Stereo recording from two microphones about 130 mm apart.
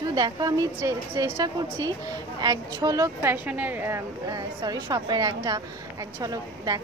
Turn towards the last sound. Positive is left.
turn(degrees=-25)  # may be behind; listen again after turning